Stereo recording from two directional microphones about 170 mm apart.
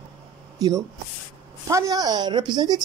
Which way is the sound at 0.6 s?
20° right (ahead or behind).